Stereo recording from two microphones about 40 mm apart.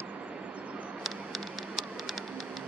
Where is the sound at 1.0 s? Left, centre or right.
Centre.